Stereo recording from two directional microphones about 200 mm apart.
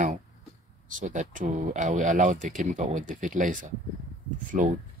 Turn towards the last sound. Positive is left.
turn(degrees=-40)  # may be behind; listen again after turning